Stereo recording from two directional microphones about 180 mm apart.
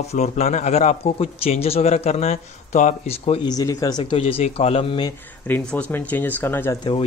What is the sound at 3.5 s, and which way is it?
Speech, 20° left (ahead or behind).